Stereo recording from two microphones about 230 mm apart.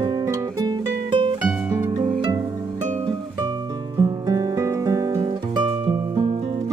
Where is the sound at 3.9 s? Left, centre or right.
Centre.